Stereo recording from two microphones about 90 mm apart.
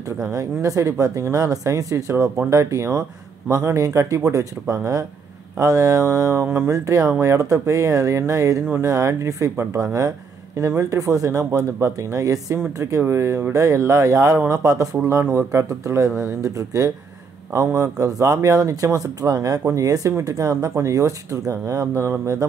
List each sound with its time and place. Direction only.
0.3 s a man's voice: 40° right (ahead or behind)
8.6 s a man's voice: 25° right (ahead or behind)